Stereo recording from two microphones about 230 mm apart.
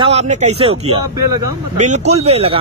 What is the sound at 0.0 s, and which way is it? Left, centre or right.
Speech, right.